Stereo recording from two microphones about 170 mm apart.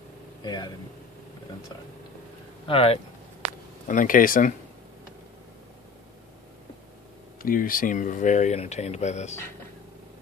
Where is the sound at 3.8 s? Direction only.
50° left (ahead or behind).